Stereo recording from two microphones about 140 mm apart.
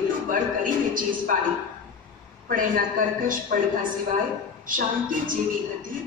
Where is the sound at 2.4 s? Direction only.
80° right.